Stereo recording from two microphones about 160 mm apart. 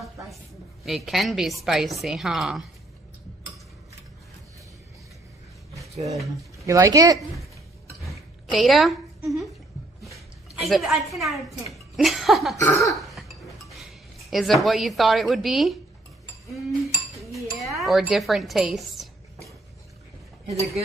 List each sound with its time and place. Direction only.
0.8 s a woman's voice: centre (ahead or behind)
6.6 s speech: 20° right (ahead or behind)
8.5 s a woman's voice: centre (ahead or behind)
12.6 s cough: 20° left (ahead or behind)
13.0 s music: centre (ahead or behind)
14.3 s a woman's voice: centre (ahead or behind)
16.5 s cutlery: centre (ahead or behind)
20.4 s speech: 45° right (ahead or behind)